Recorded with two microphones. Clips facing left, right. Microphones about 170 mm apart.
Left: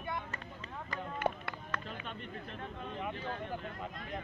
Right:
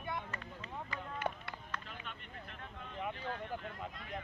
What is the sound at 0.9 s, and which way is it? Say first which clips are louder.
Run: left 5 dB; 55° left (ahead or behind).